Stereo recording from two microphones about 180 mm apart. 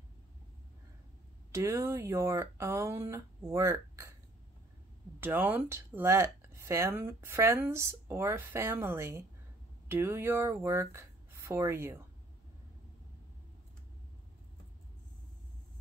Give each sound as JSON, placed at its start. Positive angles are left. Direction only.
{"t": 1.5, "sound": "speech", "side_deg": -15}
{"t": 5.2, "sound": "speech", "side_deg": -10}